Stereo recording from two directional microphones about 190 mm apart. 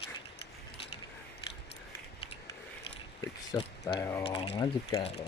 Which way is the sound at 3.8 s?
20° left (ahead or behind).